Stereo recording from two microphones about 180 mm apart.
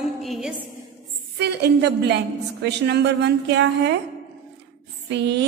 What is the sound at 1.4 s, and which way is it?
A woman's voice, 65° right (ahead or behind).